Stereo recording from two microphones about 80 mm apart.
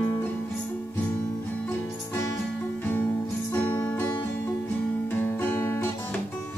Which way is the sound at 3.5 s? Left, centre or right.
Left.